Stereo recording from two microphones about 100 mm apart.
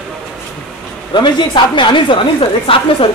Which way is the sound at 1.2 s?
50° left (ahead or behind).